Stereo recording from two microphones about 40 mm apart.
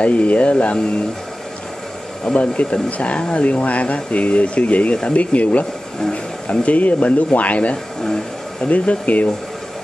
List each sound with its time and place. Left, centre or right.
0.0 s speech: left
2.3 s speech: left
5.9 s speech: centre
6.6 s speech: left
7.7 s speech: centre
8.5 s speech: left